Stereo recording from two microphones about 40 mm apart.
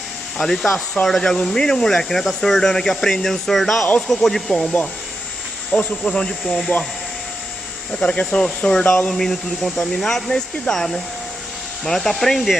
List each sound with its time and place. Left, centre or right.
0.4 s speech: centre
2.0 s speech: centre
6.7 s speech: left
8.0 s speech: left
9.1 s speech: centre